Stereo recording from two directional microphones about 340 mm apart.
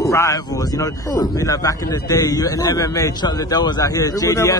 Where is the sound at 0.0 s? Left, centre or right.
Centre.